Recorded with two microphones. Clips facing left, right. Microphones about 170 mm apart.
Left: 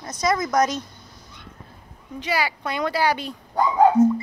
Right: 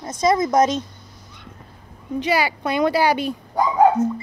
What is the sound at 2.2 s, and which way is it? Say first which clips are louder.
Speech: right 4 dB; 20° right (ahead or behind).